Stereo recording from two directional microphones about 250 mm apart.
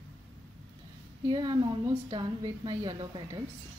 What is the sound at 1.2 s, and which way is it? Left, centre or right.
A woman's voice, centre.